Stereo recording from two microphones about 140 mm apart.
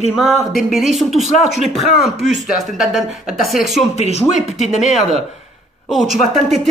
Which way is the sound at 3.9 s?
50° left (ahead or behind).